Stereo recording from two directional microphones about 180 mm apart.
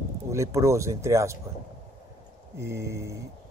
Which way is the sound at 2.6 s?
15° right (ahead or behind).